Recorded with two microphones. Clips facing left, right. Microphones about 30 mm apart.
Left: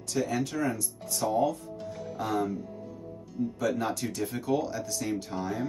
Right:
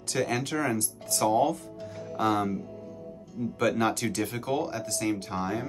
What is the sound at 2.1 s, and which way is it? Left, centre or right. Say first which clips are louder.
Speech: right 4 dB; right.